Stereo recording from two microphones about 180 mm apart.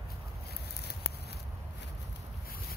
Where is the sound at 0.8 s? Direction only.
65° left (ahead or behind).